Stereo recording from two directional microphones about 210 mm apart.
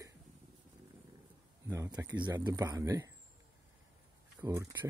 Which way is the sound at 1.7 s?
15° right (ahead or behind).